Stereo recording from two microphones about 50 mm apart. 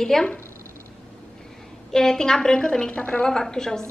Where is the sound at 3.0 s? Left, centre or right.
Left.